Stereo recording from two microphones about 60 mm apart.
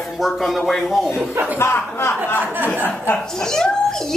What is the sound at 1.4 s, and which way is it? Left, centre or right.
Speech, right.